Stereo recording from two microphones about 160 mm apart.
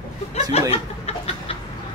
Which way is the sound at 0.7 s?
35° left (ahead or behind).